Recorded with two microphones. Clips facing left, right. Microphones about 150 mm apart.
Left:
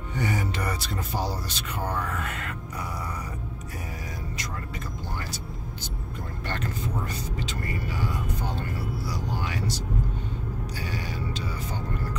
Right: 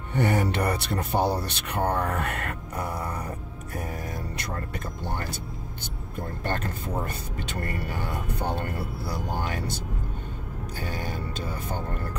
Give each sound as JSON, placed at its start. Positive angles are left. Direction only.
{"t": 0.1, "sound": "speech", "side_deg": -60}
{"t": 4.4, "sound": "speech", "side_deg": -60}
{"t": 10.8, "sound": "speech", "side_deg": -50}